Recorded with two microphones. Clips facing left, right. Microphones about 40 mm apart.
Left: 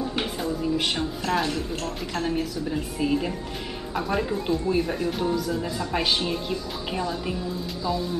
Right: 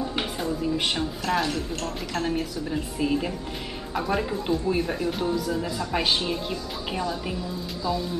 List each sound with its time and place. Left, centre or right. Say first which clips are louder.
0.2 s speech: even; centre